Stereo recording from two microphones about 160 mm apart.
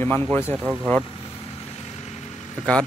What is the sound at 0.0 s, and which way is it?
Speech, 10° left (ahead or behind).